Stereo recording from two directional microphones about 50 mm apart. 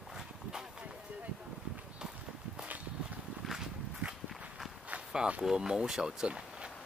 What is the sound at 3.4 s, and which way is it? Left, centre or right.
Walk, centre.